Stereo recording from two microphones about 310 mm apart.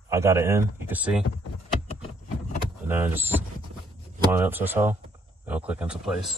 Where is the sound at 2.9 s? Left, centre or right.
Centre.